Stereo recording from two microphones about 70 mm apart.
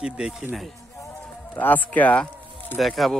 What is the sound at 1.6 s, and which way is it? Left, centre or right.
Speech, left.